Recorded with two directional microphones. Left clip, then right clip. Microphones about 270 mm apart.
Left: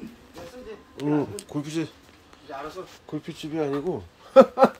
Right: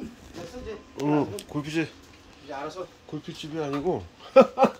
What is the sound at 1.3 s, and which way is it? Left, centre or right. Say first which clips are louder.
Speech: right 1 dB; centre.